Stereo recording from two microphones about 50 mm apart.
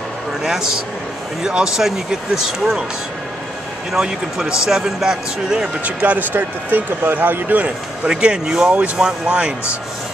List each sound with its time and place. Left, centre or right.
0.4 s speech: centre
3.9 s speech: centre
6.1 s speech: right; by 9.5 s centre